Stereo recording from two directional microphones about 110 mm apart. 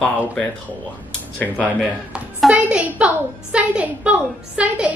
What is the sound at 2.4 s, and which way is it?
Speech, centre (ahead or behind).